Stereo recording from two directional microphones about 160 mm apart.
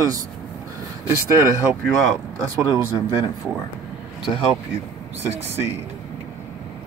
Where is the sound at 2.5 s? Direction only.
20° right (ahead or behind).